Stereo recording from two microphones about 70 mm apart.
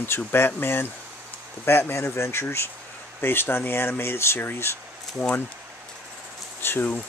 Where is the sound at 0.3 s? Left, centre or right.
Left.